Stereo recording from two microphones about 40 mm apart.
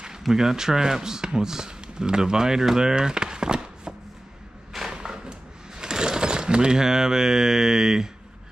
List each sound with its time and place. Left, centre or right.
0.3 s speech: centre
4.9 s a sound: right
5.8 s speech: centre